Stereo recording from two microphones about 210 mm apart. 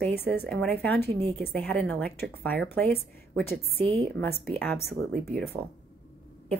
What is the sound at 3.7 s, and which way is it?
Speech, 30° right (ahead or behind).